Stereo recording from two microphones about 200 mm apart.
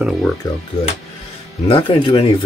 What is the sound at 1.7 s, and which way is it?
Speech, 25° left (ahead or behind).